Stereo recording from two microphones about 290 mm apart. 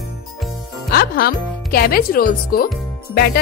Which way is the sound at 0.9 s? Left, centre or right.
Left.